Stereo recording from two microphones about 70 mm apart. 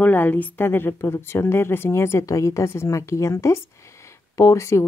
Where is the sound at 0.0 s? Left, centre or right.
Left.